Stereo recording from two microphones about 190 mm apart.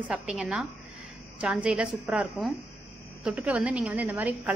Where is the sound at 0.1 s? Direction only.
5° right (ahead or behind).